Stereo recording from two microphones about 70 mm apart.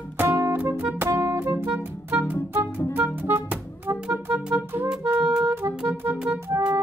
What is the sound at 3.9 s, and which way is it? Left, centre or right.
Music, right.